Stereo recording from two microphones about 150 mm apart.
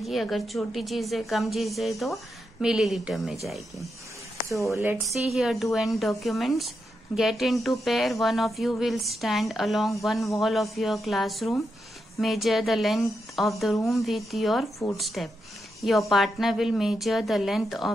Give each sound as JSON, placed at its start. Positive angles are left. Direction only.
{"t": 0.0, "sound": "speech", "side_deg": 0}
{"t": 4.7, "sound": "a woman's voice", "side_deg": -20}
{"t": 5.3, "sound": "speech", "side_deg": 0}